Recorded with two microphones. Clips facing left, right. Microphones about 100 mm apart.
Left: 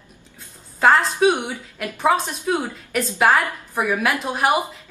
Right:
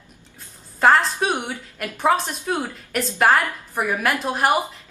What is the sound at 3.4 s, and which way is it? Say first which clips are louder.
Speech: left 1 dB; 15° left (ahead or behind).